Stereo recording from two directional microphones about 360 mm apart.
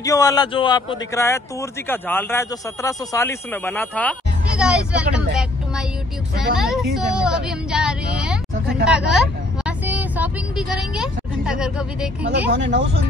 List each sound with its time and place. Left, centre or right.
0.0 s a woman's voice: centre
12.4 s speech: right